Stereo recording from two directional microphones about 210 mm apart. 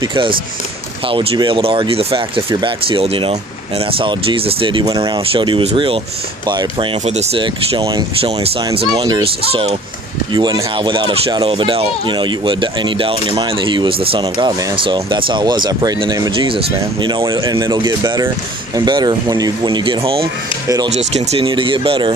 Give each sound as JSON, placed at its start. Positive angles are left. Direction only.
{"t": 0.0, "sound": "speech", "side_deg": -25}
{"t": 20.9, "sound": "speech", "side_deg": -30}